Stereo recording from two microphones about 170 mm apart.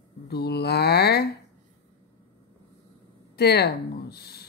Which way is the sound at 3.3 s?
70° left (ahead or behind).